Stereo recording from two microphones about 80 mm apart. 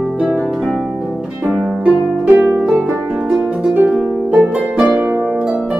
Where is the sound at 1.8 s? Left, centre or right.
Centre.